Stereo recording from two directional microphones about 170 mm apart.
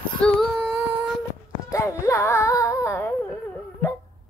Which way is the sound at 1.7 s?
15° left (ahead or behind).